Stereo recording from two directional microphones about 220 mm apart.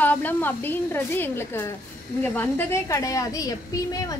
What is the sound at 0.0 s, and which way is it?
A woman's voice, 10° left (ahead or behind).